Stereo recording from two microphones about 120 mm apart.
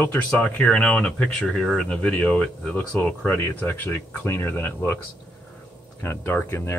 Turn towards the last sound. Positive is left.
turn(degrees=20)  # may be behind; listen again after turning